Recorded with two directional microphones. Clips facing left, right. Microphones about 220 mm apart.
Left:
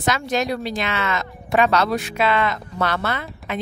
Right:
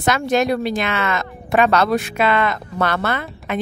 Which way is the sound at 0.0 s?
55° right (ahead or behind).